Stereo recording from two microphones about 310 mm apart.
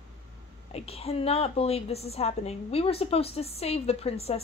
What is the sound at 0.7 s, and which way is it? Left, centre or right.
A woman's voice, centre.